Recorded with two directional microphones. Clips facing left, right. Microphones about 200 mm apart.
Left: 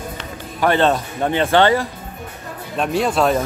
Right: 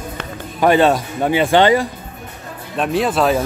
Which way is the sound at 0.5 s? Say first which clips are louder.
Right 3 dB; 10° right (ahead or behind).